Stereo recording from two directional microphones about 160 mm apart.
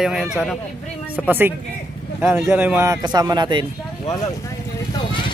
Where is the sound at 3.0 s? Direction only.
25° right (ahead or behind).